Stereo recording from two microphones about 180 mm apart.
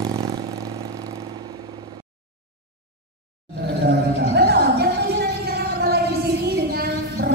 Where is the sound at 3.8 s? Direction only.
65° right (ahead or behind).